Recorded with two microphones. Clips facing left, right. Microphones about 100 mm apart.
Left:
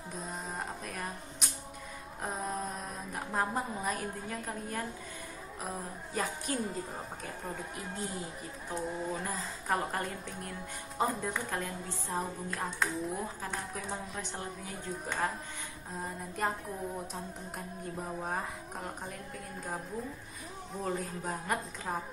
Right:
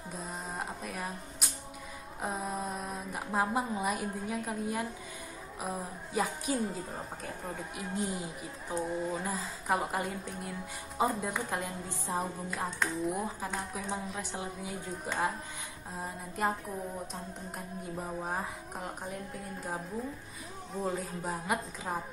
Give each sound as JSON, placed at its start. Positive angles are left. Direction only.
{"t": 0.1, "sound": "music", "side_deg": 0}
{"t": 2.2, "sound": "a sound", "side_deg": -5}
{"t": 5.6, "sound": "music", "side_deg": -5}
{"t": 11.0, "sound": "a woman's voice", "side_deg": -5}
{"t": 12.2, "sound": "music", "side_deg": 0}
{"t": 20.8, "sound": "music", "side_deg": 0}